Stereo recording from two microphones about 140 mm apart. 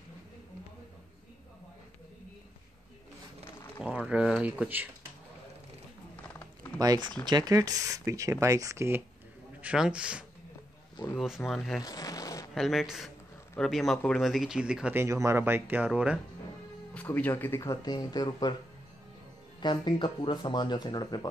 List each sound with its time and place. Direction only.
3.8 s speech: 5° right (ahead or behind)
6.8 s speech: 30° right (ahead or behind)
9.6 s speech: 5° right (ahead or behind)
11.4 s speech: centre (ahead or behind)
11.8 s zipper: 25° left (ahead or behind)
12.5 s speech: centre (ahead or behind)
15.0 s speech: 20° right (ahead or behind)
16.9 s speech: 10° left (ahead or behind); by 18.5 s 30° left (ahead or behind)
19.6 s speech: 35° left (ahead or behind)